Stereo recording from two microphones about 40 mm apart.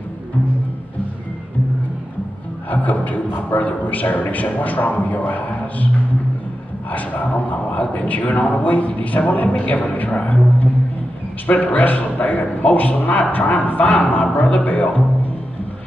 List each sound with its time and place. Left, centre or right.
2.7 s a man's voice: left
6.9 s a man's voice: left